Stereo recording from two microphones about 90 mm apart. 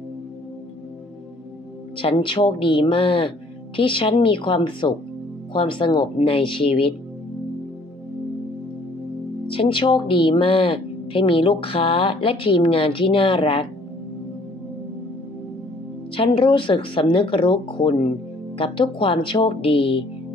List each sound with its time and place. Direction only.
2.0 s speech: 85° left
9.5 s speech: 75° left (ahead or behind)
16.2 s speech: 70° left (ahead or behind); by 20.1 s 90° left